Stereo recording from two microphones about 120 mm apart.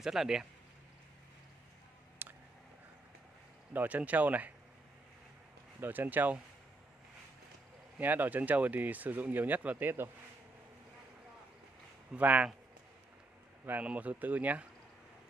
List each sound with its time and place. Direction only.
0.0 s speech: 5° right (ahead or behind)
2.2 s a sound: 15° right (ahead or behind)
3.7 s speech: 15° right (ahead or behind)
5.8 s speech: 15° right (ahead or behind)
8.0 s speech: 15° right (ahead or behind)
12.1 s speech: 10° right (ahead or behind)
13.7 s speech: 15° right (ahead or behind)